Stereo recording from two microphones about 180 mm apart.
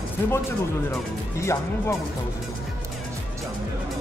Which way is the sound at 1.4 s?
15° left (ahead or behind).